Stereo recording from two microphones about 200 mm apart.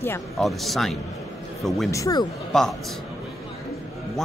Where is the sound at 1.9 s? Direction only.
15° left (ahead or behind).